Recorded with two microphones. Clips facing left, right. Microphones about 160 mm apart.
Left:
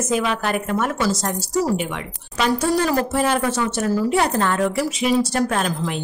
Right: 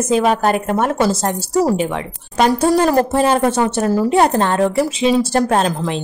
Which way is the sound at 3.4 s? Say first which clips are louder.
Right 5 dB; 50° right (ahead or behind).